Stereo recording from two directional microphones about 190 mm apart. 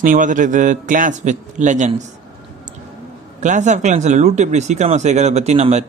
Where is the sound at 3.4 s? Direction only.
40° right (ahead or behind).